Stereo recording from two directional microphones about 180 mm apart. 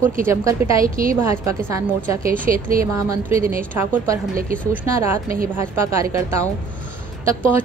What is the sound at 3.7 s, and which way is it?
A woman's voice, 15° right (ahead or behind).